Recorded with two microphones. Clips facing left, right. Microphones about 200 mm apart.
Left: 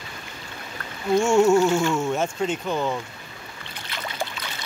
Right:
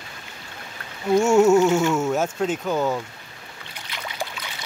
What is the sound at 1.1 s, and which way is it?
Speech, 5° right (ahead or behind).